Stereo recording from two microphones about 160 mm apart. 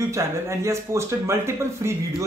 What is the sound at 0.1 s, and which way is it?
Speech, 20° right (ahead or behind).